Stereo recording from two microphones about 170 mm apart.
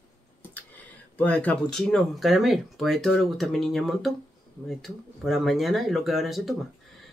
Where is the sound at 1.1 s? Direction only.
10° left (ahead or behind).